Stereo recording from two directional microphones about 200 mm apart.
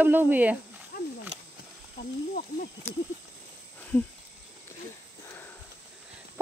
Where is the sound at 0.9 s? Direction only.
50° left (ahead or behind).